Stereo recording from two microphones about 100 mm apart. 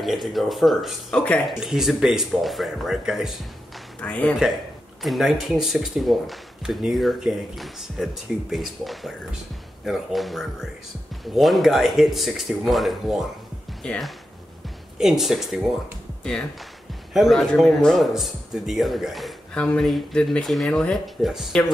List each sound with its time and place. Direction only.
0.0 s speech: centre (ahead or behind)
4.0 s speech: 15° left (ahead or behind)
5.0 s speech: centre (ahead or behind)
17.1 s speech: centre (ahead or behind)